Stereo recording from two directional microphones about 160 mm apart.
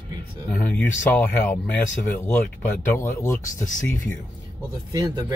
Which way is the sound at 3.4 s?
55° left (ahead or behind).